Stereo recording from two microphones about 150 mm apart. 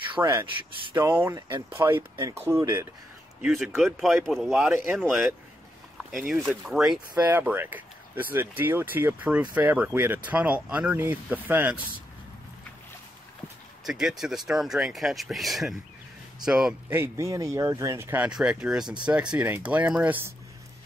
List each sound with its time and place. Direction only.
0.1 s speech: 25° right (ahead or behind)
0.9 s speech: 15° right (ahead or behind)
3.4 s speech: centre (ahead or behind)
13.8 s speech: centre (ahead or behind)